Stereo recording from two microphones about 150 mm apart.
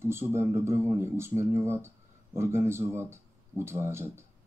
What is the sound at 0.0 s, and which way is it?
Speech, 15° right (ahead or behind).